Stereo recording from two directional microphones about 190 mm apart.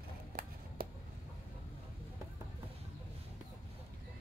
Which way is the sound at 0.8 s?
50° right (ahead or behind).